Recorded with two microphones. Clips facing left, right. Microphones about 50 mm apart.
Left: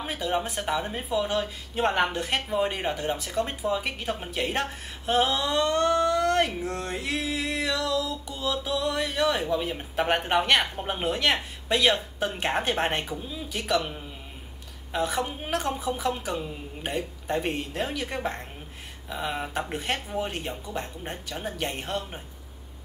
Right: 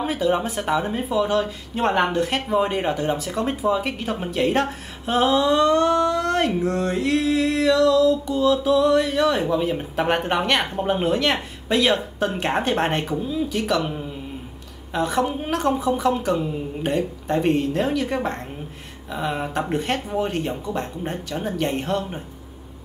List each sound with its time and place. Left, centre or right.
0.0 s speech: centre